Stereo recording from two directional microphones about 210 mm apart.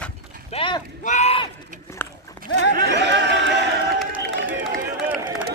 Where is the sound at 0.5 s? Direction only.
25° left (ahead or behind).